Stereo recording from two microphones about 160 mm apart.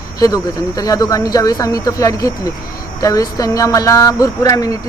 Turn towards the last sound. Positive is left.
turn(degrees=20)  # may be behind; listen again after turning